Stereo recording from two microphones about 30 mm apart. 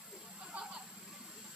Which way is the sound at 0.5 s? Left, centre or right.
Right.